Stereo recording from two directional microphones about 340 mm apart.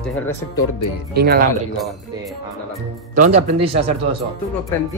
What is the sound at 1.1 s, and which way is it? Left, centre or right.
Speech, right.